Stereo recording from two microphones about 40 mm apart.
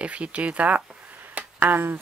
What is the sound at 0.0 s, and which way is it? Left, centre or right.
Speech, right.